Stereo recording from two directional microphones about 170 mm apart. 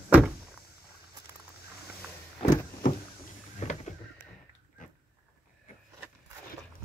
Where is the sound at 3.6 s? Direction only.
45° left (ahead or behind).